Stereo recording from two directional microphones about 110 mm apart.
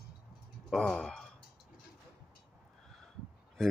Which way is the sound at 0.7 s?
5° left (ahead or behind).